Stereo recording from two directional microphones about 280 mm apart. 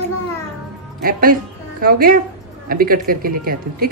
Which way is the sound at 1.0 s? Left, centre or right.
Right.